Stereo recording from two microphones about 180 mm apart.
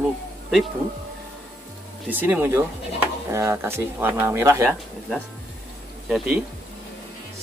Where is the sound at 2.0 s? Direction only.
10° right (ahead or behind).